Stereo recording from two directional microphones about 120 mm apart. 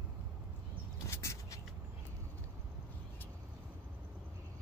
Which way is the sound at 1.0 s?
25° left (ahead or behind).